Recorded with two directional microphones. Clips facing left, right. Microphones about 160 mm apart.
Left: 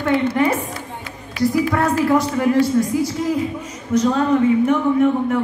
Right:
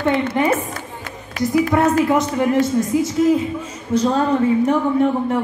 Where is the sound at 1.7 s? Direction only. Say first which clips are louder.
Right 1 dB; 20° right (ahead or behind).